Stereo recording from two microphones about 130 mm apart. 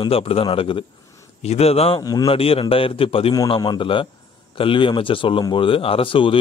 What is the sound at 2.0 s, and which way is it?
Speech, 30° left (ahead or behind).